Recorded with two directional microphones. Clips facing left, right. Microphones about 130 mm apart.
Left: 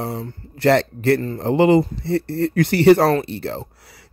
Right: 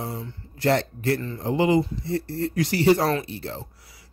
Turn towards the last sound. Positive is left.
turn(degrees=65)  # may be behind; listen again after turning